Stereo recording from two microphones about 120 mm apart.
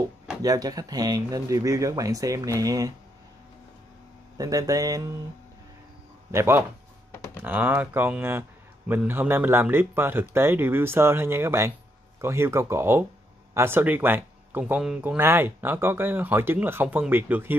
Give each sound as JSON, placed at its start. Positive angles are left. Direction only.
{"t": 0.4, "sound": "a man's voice", "side_deg": -30}
{"t": 4.4, "sound": "a man's voice", "side_deg": -30}
{"t": 6.3, "sound": "a man's voice", "side_deg": -20}